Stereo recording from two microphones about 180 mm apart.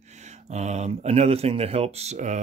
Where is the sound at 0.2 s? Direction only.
40° right (ahead or behind).